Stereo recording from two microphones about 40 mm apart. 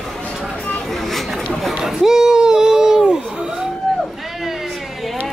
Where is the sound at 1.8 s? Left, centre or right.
Centre.